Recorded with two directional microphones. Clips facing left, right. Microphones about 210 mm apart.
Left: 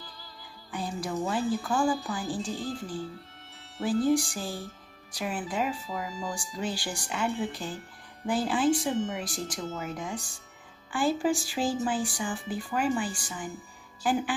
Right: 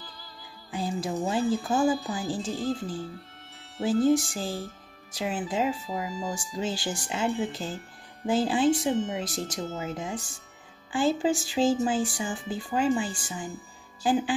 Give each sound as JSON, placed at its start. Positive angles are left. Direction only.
{"t": 0.7, "sound": "speech", "side_deg": -25}
{"t": 3.8, "sound": "speech", "side_deg": -25}